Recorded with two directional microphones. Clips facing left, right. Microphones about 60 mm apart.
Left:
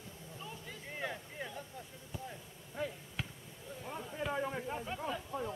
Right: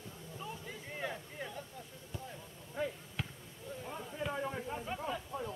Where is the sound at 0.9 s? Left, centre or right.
Centre.